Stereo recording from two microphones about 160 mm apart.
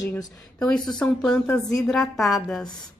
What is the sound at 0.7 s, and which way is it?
A woman's voice, 5° left (ahead or behind).